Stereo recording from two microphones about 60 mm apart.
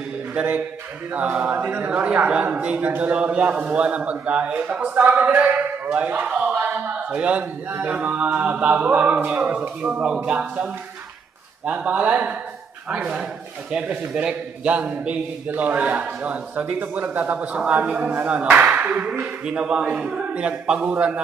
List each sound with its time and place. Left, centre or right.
0.3 s a man's voice: right
6.6 s a sound: right
7.9 s a man's voice: right
11.6 s a man's voice: right